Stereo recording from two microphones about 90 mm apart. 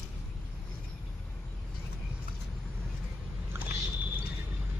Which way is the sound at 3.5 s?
20° right (ahead or behind).